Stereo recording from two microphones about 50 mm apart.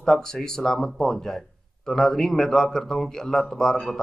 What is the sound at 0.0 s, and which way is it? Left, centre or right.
A man's voice, centre.